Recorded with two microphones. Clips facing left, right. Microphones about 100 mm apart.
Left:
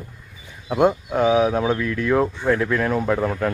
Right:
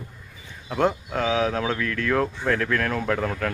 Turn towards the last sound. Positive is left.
turn(degrees=15)  # may be behind; listen again after turning